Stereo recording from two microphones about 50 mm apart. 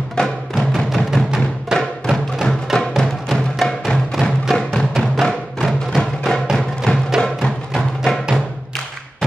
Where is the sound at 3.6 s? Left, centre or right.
Centre.